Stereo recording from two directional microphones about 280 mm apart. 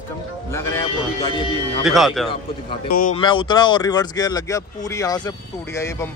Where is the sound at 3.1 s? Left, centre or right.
Centre.